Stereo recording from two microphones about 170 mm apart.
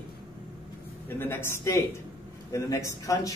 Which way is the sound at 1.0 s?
10° left (ahead or behind).